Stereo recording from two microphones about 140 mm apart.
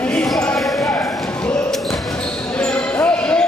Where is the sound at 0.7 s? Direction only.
20° left (ahead or behind).